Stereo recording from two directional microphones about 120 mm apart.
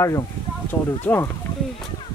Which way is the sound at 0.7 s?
15° left (ahead or behind).